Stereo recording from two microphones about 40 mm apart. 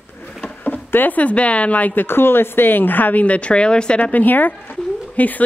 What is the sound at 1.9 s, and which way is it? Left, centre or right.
A woman's voice, left.